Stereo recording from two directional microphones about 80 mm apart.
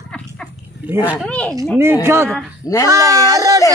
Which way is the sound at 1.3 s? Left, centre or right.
Centre.